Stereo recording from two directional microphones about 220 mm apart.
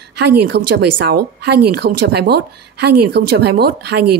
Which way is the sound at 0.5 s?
50° right (ahead or behind).